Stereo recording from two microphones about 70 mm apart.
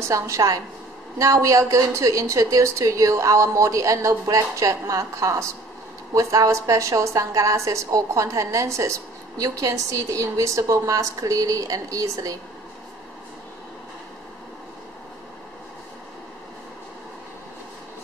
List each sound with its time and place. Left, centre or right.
0.1 s a woman's voice: right